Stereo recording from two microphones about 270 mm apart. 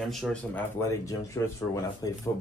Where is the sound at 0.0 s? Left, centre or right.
Centre.